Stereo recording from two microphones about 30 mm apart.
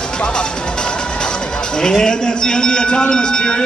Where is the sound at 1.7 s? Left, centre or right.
Left.